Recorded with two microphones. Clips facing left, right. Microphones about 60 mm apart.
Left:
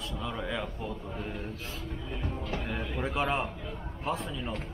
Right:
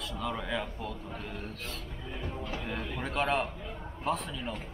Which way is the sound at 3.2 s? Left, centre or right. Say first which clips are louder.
Right 3 dB; centre.